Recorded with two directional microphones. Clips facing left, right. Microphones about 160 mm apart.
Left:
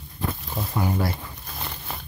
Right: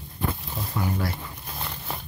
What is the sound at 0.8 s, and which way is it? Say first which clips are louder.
Speech: left 3 dB; 25° left (ahead or behind).